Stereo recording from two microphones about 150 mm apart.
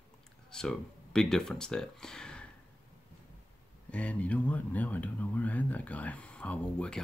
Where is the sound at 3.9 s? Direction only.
10° left (ahead or behind).